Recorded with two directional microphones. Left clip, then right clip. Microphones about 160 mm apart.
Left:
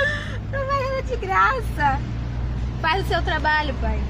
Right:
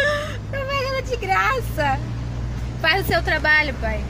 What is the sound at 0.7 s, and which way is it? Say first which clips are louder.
Music: right 1 dB; 30° right (ahead or behind).